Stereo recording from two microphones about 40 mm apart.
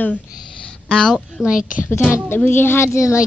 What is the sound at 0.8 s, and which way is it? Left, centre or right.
Speech, left.